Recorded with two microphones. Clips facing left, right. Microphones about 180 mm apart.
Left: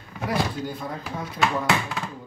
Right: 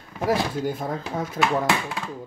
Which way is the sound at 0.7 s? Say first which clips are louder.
Right 5 dB; 45° right (ahead or behind).